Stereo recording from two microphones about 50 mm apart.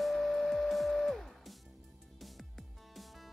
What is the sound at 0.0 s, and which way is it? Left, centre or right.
Music, centre.